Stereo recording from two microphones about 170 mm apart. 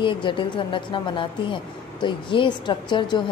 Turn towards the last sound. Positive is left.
turn(degrees=25)  # may be behind; listen again after turning